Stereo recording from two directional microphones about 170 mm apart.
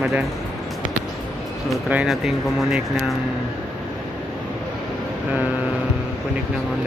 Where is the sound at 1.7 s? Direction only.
5° right (ahead or behind).